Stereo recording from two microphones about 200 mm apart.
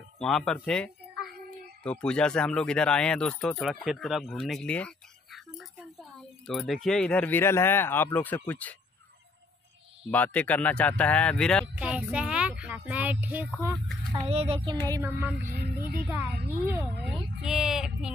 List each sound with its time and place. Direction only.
0.2 s speech: centre (ahead or behind)
10.1 s speech: 10° left (ahead or behind); by 13.5 s 10° right (ahead or behind)
14.3 s speech: 30° right (ahead or behind)
14.9 s speech: 15° right (ahead or behind)
15.4 s speech: 50° right (ahead or behind)
16.5 s speech: 10° right (ahead or behind)
17.1 s a sound: centre (ahead or behind)